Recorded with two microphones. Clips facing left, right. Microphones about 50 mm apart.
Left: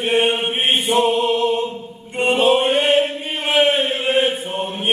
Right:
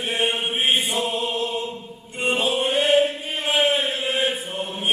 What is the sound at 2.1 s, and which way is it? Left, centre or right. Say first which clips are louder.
Chant: left 7 dB; left.